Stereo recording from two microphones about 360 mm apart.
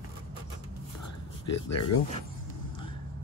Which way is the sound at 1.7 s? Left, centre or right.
Left.